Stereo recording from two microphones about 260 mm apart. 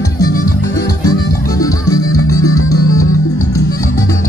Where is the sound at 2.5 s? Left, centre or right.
Left.